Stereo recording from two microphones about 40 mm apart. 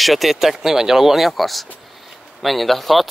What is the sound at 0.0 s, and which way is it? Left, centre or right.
Speech, centre.